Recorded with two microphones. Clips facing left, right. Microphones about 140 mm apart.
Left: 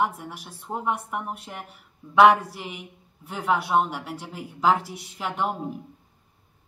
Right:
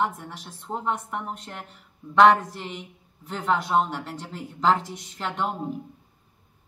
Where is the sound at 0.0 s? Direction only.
10° left (ahead or behind).